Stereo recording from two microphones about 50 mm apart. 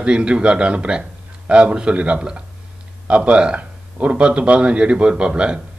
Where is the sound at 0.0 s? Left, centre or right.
Centre.